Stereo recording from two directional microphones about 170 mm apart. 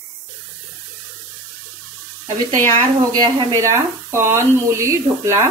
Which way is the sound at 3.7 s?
15° right (ahead or behind).